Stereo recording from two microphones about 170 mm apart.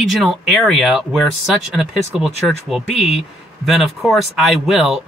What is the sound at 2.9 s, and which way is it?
Speech, 40° left (ahead or behind).